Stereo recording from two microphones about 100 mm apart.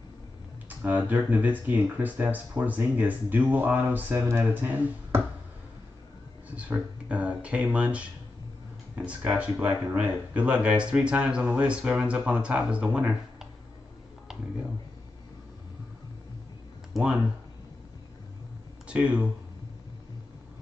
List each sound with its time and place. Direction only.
0.7 s speech: 15° right (ahead or behind)
6.5 s speech: 15° right (ahead or behind)
16.9 s speech: 10° right (ahead or behind)
18.9 s speech: 15° right (ahead or behind)